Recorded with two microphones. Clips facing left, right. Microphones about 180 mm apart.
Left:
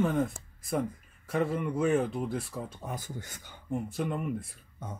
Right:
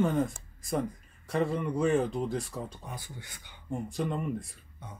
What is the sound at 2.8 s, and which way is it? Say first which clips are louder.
Speech: left 5 dB; 45° left (ahead or behind).